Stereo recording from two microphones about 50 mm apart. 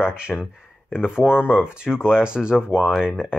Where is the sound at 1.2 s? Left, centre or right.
Left.